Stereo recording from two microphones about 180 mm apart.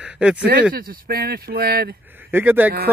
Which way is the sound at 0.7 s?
55° right (ahead or behind).